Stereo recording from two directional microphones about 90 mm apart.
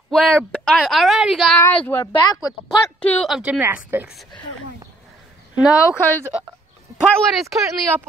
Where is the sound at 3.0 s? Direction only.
15° left (ahead or behind).